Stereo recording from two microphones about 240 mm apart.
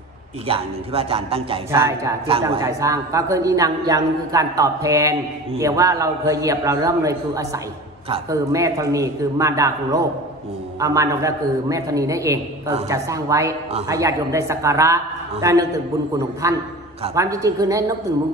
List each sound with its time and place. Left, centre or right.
0.5 s a man's voice: right
1.7 s a woman's voice: centre